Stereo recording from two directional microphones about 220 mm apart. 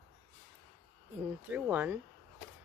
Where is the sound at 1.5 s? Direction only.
10° right (ahead or behind).